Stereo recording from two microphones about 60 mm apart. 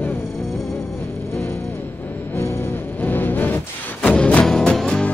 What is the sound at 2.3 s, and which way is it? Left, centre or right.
Music, left.